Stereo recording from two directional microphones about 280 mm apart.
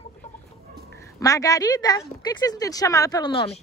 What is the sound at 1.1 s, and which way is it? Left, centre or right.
Speech, centre.